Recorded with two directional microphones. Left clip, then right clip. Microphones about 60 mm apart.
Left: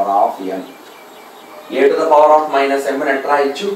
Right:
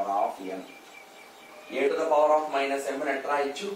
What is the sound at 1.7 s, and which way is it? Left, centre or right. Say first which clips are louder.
Speech: left 13 dB; centre.